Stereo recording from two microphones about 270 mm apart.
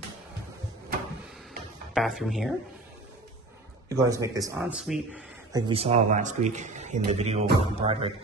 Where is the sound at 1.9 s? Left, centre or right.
Centre.